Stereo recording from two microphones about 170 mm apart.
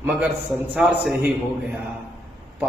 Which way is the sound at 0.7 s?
Centre (ahead or behind).